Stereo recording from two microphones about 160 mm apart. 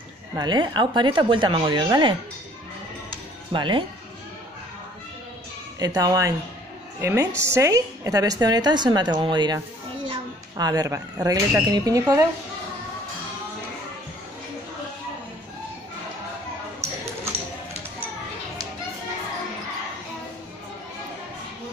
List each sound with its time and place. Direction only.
0.4 s a woman's voice: 25° right (ahead or behind)
3.5 s speech: 30° right (ahead or behind)
5.8 s a woman's voice: 25° right (ahead or behind)